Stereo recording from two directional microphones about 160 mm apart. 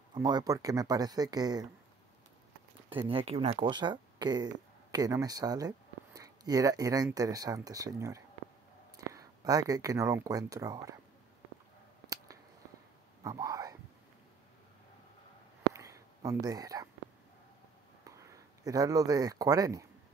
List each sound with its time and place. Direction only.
0.1 s speech: 25° right (ahead or behind)
2.9 s speech: 35° right (ahead or behind)
13.2 s whispering: 20° right (ahead or behind)
15.7 s a sound: 20° right (ahead or behind)
18.0 s speech: 20° right (ahead or behind)